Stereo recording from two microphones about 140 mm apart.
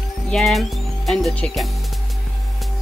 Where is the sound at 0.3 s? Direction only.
Centre (ahead or behind).